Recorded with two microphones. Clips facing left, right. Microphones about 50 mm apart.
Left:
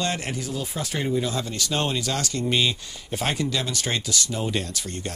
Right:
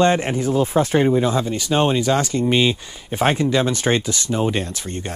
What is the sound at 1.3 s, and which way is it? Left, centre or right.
Speech, centre.